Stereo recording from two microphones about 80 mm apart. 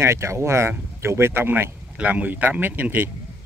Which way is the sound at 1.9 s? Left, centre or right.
Centre.